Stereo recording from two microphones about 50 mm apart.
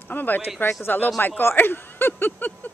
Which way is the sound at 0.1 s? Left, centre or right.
Left.